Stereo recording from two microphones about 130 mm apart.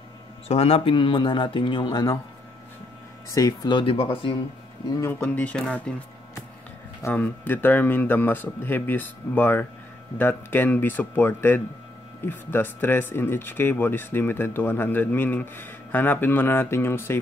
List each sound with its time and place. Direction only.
0.5 s speech: 50° left (ahead or behind); by 2.1 s 30° left (ahead or behind)
3.3 s speech: 25° left (ahead or behind)
3.7 s speech: 45° left (ahead or behind)
5.0 s speech: 15° left (ahead or behind)